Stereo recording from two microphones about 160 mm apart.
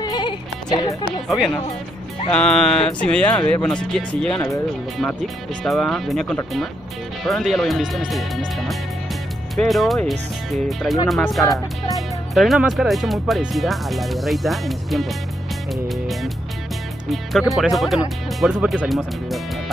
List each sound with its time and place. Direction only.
0.0 s music: 30° left (ahead or behind)
2.3 s speech: 5° left (ahead or behind)
5.6 s speech: 5° left (ahead or behind)
15.7 s music: centre (ahead or behind)
17.1 s speech: centre (ahead or behind)